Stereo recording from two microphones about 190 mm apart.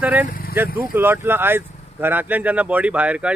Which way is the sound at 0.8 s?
10° right (ahead or behind).